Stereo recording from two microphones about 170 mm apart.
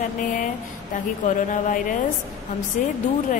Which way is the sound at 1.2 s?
50° left (ahead or behind).